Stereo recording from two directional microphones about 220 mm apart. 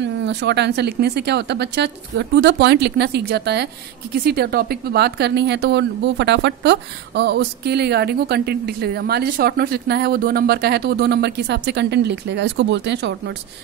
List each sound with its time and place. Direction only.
0.0 s a woman's voice: 50° right (ahead or behind)